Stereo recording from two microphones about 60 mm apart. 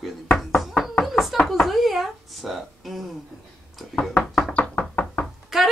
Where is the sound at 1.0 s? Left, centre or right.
Centre.